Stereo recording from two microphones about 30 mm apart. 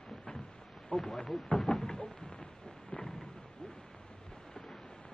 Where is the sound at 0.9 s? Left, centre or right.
Left.